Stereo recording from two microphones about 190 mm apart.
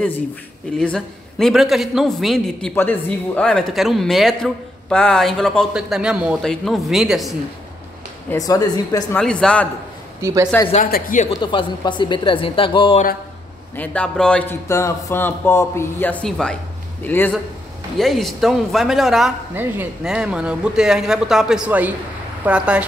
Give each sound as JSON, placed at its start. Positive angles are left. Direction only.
{"t": 0.7, "sound": "a man's voice", "side_deg": 0}
{"t": 8.3, "sound": "speech", "side_deg": 20}
{"t": 9.1, "sound": "a man's voice", "side_deg": 5}
{"t": 10.2, "sound": "speech", "side_deg": -15}
{"t": 10.7, "sound": "speech", "side_deg": 45}
{"t": 11.2, "sound": "speech", "side_deg": 25}
{"t": 13.7, "sound": "a man's voice", "side_deg": 5}